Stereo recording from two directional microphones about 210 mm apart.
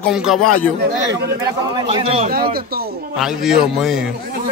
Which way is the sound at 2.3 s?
45° right (ahead or behind).